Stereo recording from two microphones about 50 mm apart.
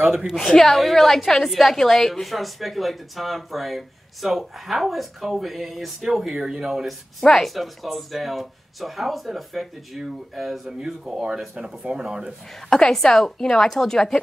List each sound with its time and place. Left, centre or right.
0.5 s a woman's voice: centre
12.5 s a woman's voice: centre